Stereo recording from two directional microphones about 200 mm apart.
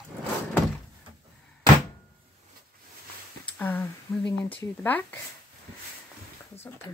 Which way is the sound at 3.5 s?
10° left (ahead or behind).